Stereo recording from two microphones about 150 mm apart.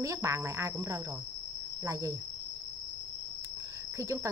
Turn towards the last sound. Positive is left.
turn(degrees=-20)  # may be behind; listen again after turning